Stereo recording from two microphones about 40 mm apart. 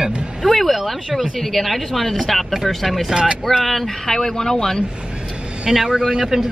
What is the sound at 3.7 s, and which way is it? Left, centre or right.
Speech, centre.